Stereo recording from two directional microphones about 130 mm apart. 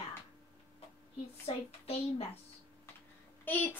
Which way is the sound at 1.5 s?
50° left (ahead or behind).